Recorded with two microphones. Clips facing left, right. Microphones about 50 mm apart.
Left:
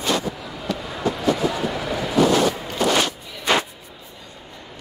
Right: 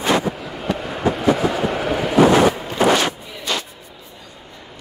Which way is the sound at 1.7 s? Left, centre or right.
Right.